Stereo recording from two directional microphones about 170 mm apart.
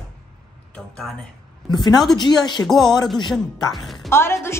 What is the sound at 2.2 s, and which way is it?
Speech, 25° left (ahead or behind).